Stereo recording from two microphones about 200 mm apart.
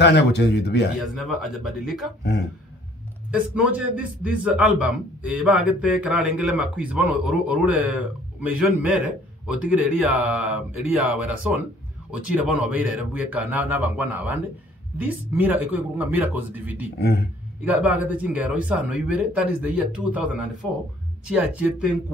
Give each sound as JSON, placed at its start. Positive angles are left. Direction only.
{"t": 0.0, "sound": "speech", "side_deg": 55}
{"t": 1.0, "sound": "speech", "side_deg": 0}
{"t": 3.3, "sound": "a man's voice", "side_deg": -5}
{"t": 17.0, "sound": "speech", "side_deg": 55}
{"t": 17.6, "sound": "a man's voice", "side_deg": -10}